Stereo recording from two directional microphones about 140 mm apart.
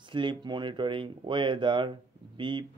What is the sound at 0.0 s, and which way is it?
Speech, 35° right (ahead or behind).